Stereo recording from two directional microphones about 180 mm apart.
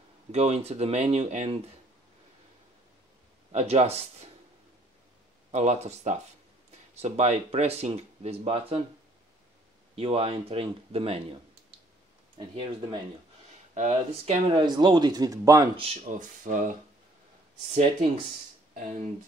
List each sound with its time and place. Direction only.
0.3 s speech: 35° right (ahead or behind)
3.5 s speech: 35° right (ahead or behind)
5.5 s speech: 35° right (ahead or behind)
9.9 s speech: 30° right (ahead or behind)
12.4 s speech: 25° right (ahead or behind)
13.7 s speech: 40° right (ahead or behind)
14.5 s speech: 25° right (ahead or behind)
15.8 s speech: 35° right (ahead or behind)